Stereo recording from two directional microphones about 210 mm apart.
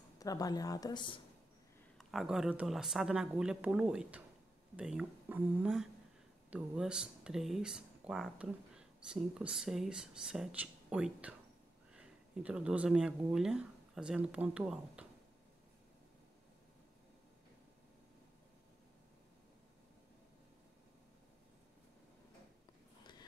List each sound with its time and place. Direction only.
0.2 s a woman's voice: 15° left (ahead or behind)
2.0 s speech: centre (ahead or behind)